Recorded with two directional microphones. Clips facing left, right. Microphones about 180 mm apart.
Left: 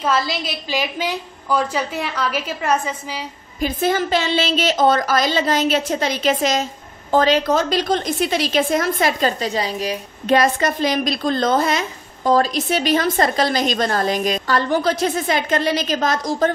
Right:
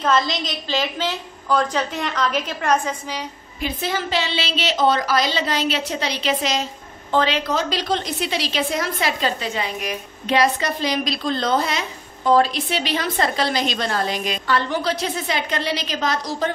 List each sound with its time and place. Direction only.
0.0 s a woman's voice: 5° left (ahead or behind)
3.6 s a woman's voice: 50° left (ahead or behind); by 9.9 s 35° left (ahead or behind)
10.2 s a woman's voice: 50° left (ahead or behind)